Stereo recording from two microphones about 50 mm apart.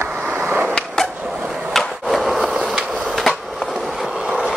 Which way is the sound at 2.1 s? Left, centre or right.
Centre.